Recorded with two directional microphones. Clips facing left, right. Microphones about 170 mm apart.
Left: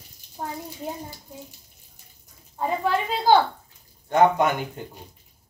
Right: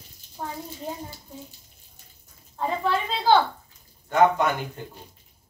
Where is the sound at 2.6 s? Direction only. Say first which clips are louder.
Left 1 dB; 10° left (ahead or behind).